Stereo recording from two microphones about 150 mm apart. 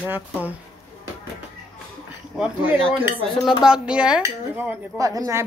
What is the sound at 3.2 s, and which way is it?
Speech, centre (ahead or behind).